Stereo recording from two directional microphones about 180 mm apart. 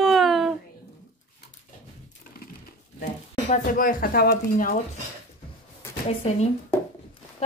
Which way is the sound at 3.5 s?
50° left (ahead or behind).